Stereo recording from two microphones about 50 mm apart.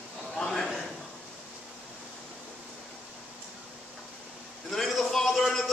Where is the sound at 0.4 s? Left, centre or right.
Centre.